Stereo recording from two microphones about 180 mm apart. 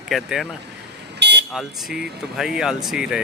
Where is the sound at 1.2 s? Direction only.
70° right (ahead or behind).